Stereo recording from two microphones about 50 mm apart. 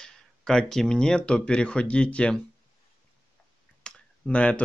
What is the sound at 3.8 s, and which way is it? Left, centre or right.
Clicking, centre.